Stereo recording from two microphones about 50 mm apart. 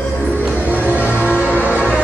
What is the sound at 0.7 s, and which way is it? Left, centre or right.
Music, right.